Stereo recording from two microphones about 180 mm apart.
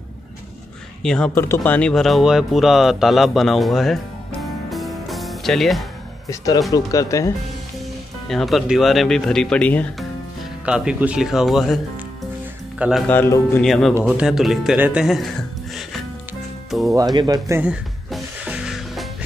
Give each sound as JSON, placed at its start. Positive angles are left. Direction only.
{"t": 1.0, "sound": "speech", "side_deg": 5}
{"t": 6.7, "sound": "a man's voice", "side_deg": 20}
{"t": 8.3, "sound": "speech", "side_deg": 0}
{"t": 10.6, "sound": "speech", "side_deg": -5}
{"t": 13.0, "sound": "a man's voice", "side_deg": 10}
{"t": 13.7, "sound": "speech", "side_deg": 0}
{"t": 16.9, "sound": "speech", "side_deg": -20}
{"t": 17.6, "sound": "music", "side_deg": -5}